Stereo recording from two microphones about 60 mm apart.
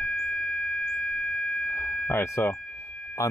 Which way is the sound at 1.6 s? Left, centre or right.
Left.